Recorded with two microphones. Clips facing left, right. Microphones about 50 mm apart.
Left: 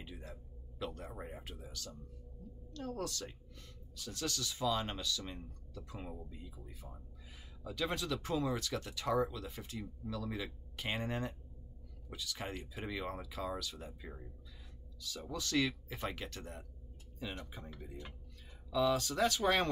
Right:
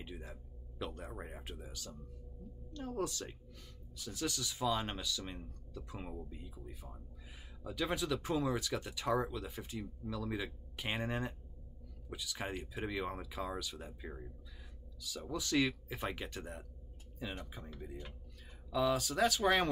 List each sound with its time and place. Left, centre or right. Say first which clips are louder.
0.0 s a sound: right 1 dB; centre
1.5 s speech: right 1 dB; centre
15.3 s speech: right 1 dB; centre
17.5 s speech: right 1 dB; centre
18.7 s speech: left 1 dB; centre